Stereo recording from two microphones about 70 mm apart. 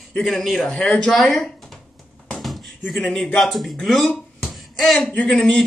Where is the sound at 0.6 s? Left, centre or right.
Centre.